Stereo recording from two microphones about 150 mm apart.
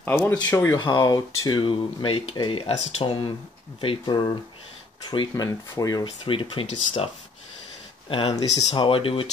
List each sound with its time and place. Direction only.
0.2 s speech: 10° left (ahead or behind)
0.7 s speech: 25° left (ahead or behind)
6.0 s speech: 35° left (ahead or behind)
8.1 s speech: 35° left (ahead or behind)